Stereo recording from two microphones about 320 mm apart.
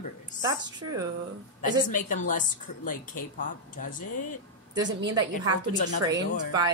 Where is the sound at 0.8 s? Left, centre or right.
Right.